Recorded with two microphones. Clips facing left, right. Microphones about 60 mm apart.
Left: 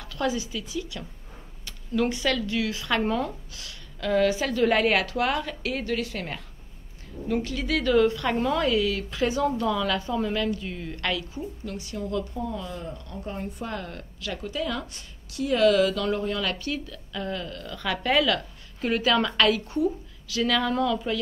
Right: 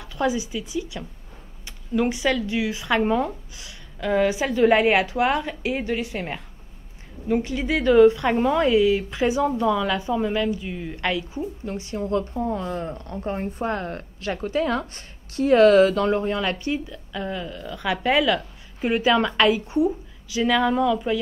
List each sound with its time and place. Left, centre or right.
0.0 s a woman's voice: centre